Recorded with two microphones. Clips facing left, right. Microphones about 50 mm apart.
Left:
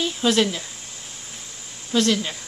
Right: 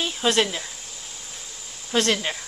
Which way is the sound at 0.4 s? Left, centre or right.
Centre.